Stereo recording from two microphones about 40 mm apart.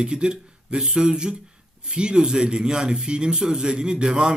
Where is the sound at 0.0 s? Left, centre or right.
Right.